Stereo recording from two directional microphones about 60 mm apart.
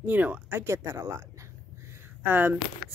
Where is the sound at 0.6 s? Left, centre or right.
Right.